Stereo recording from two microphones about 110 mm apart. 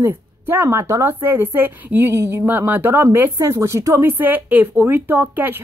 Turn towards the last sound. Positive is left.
turn(degrees=-15)  # may be behind; listen again after turning